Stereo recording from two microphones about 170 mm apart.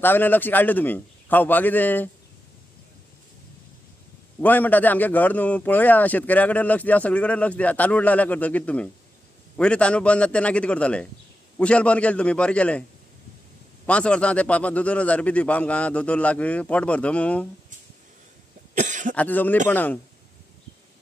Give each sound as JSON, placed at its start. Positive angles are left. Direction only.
{"t": 0.0, "sound": "a man's voice", "side_deg": 10}
{"t": 4.4, "sound": "a man's voice", "side_deg": 10}
{"t": 13.8, "sound": "a man's voice", "side_deg": 5}
{"t": 18.8, "sound": "speech", "side_deg": -45}
{"t": 19.1, "sound": "a man's voice", "side_deg": 10}